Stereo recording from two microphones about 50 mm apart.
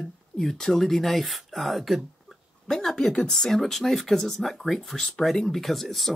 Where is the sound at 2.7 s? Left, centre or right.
Centre.